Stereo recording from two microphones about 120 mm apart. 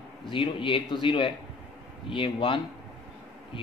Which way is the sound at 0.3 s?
45° left (ahead or behind).